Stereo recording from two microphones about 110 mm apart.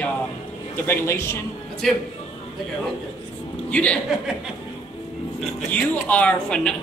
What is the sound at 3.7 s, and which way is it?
Speech, 10° left (ahead or behind).